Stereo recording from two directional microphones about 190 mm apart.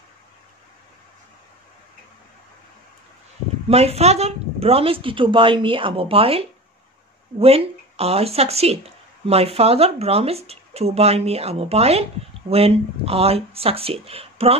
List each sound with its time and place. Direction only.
3.6 s speech: 35° right (ahead or behind)